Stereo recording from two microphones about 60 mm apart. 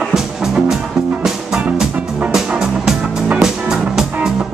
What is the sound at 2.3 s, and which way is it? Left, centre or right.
Music, centre.